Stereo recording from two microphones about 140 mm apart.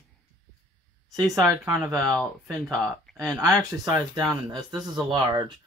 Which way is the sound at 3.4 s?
25° right (ahead or behind).